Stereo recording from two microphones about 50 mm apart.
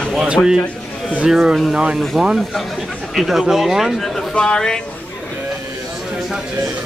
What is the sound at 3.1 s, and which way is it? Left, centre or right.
Speech, centre.